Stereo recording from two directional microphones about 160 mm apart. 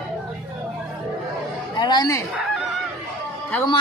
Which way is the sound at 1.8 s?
25° left (ahead or behind).